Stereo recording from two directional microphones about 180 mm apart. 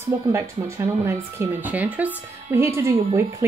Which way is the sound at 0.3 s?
15° right (ahead or behind).